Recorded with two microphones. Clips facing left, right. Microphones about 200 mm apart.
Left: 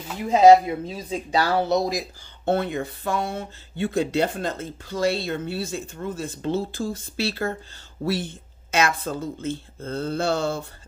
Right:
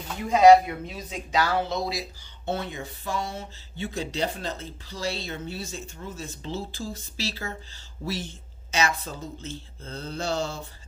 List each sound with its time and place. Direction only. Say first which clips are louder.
0.2 s speech: left 2 dB; 25° left (ahead or behind); by 10.6 s 55° left (ahead or behind)